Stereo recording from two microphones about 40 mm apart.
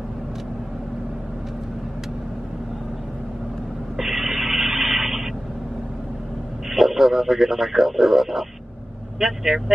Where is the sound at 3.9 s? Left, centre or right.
Centre.